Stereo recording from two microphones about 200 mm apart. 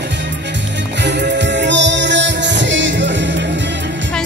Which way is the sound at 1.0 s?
60° right (ahead or behind).